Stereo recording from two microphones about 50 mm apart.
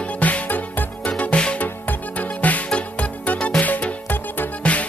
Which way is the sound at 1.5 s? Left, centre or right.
Left.